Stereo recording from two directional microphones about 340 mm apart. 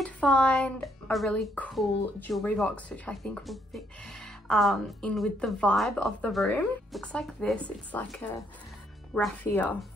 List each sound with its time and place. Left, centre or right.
0.0 s speech: centre